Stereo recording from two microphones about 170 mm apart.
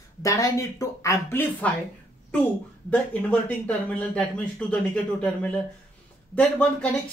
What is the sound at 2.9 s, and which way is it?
Speech, 10° left (ahead or behind).